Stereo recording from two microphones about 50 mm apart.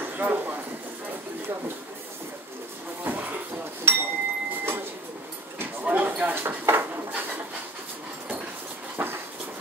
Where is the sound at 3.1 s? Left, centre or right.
Right.